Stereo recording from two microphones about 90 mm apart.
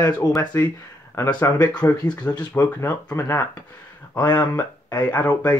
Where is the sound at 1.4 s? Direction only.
45° left (ahead or behind).